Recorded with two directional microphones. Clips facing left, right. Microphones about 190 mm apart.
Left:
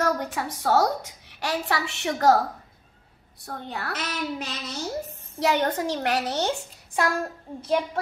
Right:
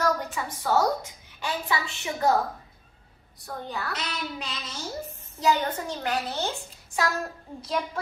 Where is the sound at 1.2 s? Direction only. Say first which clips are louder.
Left 3 dB; 75° left (ahead or behind).